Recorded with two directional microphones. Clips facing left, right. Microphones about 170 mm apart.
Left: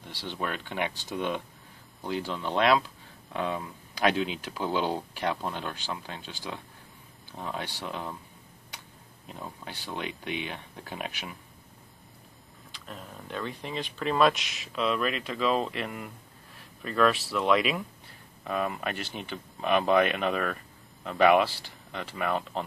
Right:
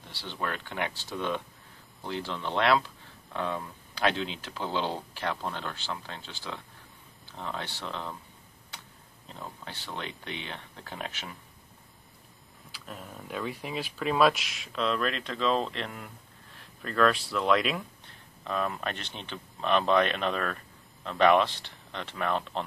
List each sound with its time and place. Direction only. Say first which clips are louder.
0.1 s speech: left 1 dB; 15° left (ahead or behind)
9.3 s speech: left 2 dB; 15° left (ahead or behind)
12.7 s speech: even; 5° right (ahead or behind)